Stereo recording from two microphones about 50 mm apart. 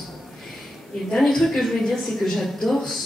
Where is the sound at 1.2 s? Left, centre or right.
Centre.